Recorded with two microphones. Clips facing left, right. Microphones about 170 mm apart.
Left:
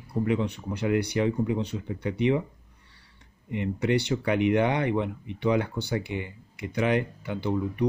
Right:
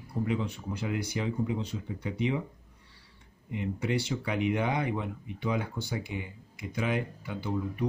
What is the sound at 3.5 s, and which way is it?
Speech, 65° left (ahead or behind).